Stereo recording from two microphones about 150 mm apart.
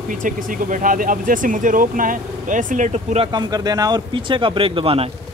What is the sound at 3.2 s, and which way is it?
Speech, 30° right (ahead or behind).